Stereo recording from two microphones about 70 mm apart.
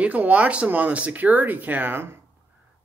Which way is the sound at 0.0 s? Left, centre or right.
Right.